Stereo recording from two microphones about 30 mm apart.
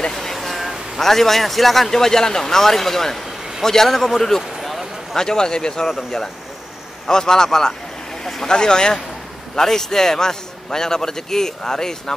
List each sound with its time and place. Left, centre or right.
0.1 s a sound: centre
1.0 s a man's voice: centre
1.9 s a man's voice: centre
4.4 s a sound: centre
5.1 s a man's voice: centre
5.9 s a man's voice: centre
7.1 s a man's voice: left
9.6 s a man's voice: centre